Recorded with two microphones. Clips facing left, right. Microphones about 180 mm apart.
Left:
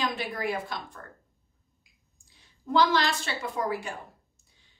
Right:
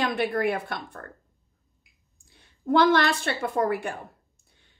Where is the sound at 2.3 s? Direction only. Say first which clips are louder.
Right 4 dB; 60° right (ahead or behind).